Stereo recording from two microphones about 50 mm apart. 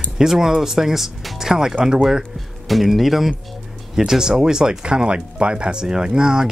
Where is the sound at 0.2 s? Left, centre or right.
Centre.